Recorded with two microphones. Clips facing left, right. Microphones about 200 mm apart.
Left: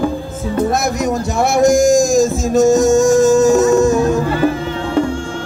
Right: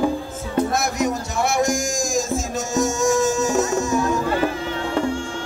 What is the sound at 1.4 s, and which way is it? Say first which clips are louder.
Music: left 11 dB; 40° left (ahead or behind).